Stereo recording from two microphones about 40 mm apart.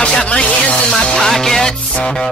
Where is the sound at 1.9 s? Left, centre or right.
Left.